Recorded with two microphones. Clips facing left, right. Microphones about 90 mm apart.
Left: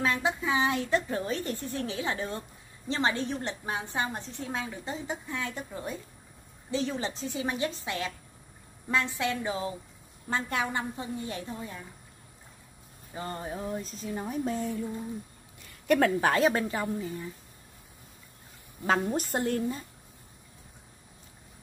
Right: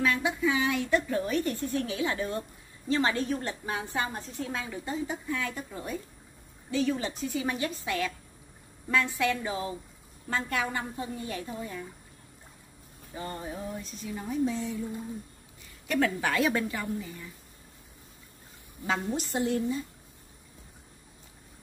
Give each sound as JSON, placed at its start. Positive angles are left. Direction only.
{"t": 0.0, "sound": "a woman's voice", "side_deg": 30}
{"t": 6.7, "sound": "a woman's voice", "side_deg": 25}
{"t": 13.1, "sound": "speech", "side_deg": 30}
{"t": 15.9, "sound": "a woman's voice", "side_deg": 45}
{"t": 18.9, "sound": "speech", "side_deg": 45}